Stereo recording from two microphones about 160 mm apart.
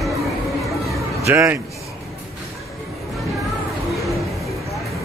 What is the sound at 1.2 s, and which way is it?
Speech, 15° right (ahead or behind).